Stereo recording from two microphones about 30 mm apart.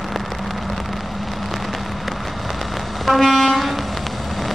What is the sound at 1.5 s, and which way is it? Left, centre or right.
Vehicle, centre.